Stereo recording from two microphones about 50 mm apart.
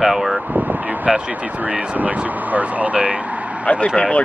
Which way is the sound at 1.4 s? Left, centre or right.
Right.